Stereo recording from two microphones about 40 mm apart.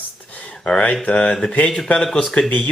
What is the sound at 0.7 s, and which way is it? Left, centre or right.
Speech, left.